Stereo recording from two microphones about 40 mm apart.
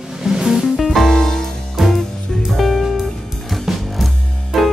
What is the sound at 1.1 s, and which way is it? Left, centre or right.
Music, centre.